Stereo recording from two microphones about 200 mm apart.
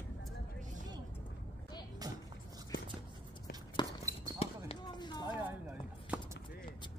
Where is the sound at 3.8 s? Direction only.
20° left (ahead or behind).